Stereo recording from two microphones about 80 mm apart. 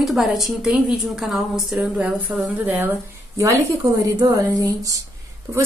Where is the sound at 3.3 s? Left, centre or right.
Right.